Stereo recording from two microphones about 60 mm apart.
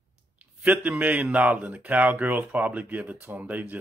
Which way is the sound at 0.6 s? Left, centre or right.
Right.